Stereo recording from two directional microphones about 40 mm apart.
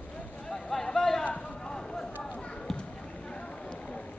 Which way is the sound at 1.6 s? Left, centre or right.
Centre.